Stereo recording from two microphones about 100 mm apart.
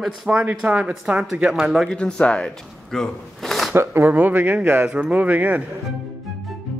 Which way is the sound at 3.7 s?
25° right (ahead or behind).